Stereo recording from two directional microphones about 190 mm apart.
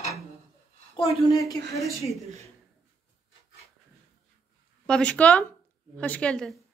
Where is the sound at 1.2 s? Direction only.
25° left (ahead or behind).